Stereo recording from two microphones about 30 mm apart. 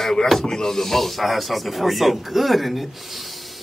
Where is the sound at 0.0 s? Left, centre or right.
Centre.